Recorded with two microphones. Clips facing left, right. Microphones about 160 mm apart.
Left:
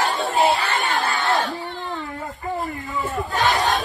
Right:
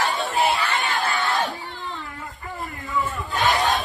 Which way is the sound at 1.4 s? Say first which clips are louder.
Left 3 dB; centre (ahead or behind).